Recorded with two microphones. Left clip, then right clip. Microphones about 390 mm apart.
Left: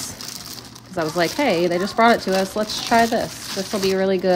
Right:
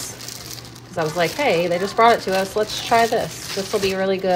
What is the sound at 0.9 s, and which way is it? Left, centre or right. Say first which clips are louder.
Speech: even; left.